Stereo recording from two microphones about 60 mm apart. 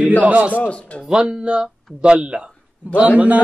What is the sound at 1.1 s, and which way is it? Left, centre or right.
Speech, centre.